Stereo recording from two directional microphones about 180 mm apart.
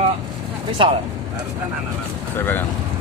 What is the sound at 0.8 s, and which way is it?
Speech, 30° right (ahead or behind).